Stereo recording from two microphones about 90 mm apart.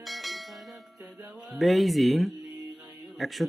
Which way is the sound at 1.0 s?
15° right (ahead or behind).